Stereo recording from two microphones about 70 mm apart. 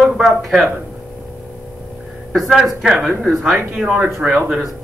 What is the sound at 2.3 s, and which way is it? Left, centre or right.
Speech, centre.